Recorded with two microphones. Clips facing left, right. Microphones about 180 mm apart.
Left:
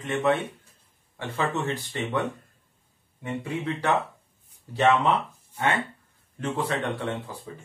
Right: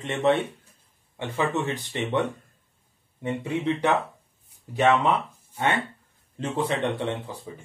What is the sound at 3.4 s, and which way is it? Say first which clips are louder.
Speech: right 3 dB; 20° right (ahead or behind).